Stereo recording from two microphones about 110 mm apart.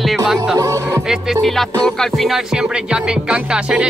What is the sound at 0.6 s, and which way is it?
Speech, 30° right (ahead or behind).